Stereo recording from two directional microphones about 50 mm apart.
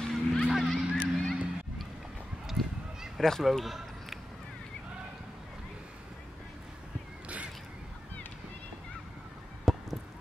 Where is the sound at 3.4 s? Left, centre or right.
Centre.